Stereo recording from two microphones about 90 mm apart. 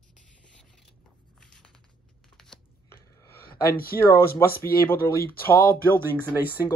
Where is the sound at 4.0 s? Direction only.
30° left (ahead or behind).